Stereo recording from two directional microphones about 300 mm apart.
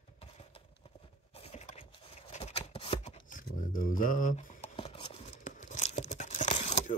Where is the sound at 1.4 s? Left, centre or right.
Left.